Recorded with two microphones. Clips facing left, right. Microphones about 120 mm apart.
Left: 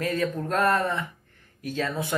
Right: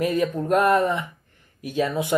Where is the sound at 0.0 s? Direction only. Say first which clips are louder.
Right 4 dB; 15° right (ahead or behind).